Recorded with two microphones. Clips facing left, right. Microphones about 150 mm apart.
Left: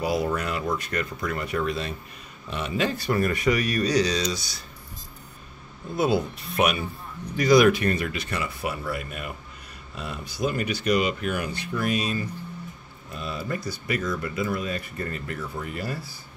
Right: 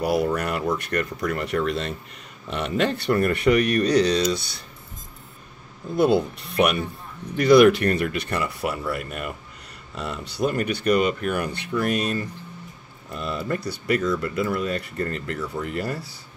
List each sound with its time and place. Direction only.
0.0 s speech: 65° right (ahead or behind)
5.9 s speech: 55° right (ahead or behind)